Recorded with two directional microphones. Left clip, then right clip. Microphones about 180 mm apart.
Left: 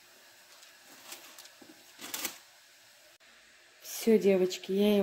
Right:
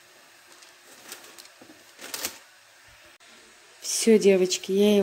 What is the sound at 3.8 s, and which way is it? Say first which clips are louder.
Speech: right 7 dB; 5° left (ahead or behind).